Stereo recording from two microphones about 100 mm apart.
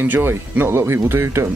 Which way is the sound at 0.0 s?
20° right (ahead or behind).